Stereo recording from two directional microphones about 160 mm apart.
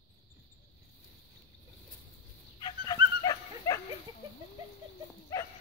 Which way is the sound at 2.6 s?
30° left (ahead or behind).